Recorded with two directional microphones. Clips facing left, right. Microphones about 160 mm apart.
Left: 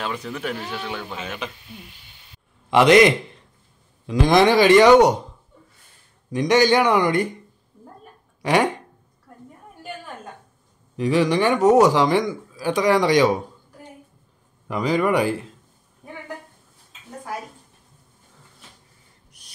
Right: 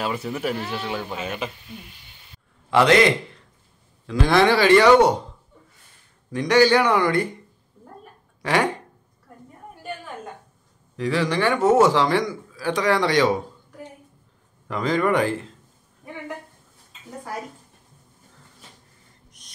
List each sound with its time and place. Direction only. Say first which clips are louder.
0.0 s speech: right 2 dB; 5° right (ahead or behind)
2.7 s speech: left 3 dB; 15° left (ahead or behind)
6.3 s speech: even; 20° left (ahead or behind)
8.4 s speech: left 3 dB; 15° left (ahead or behind)
11.0 s speech: left 4 dB; 15° left (ahead or behind)
14.7 s speech: left 1 dB; 10° left (ahead or behind)